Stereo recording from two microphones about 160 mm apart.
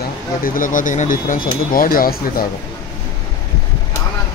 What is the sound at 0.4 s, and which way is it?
Speech, 60° left (ahead or behind).